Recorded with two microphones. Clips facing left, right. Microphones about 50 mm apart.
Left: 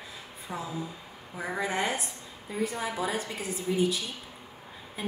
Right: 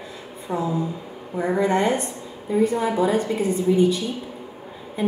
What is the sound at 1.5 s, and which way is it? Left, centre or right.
A woman's voice, centre.